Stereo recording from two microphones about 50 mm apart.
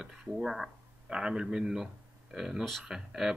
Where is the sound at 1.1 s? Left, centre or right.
Centre.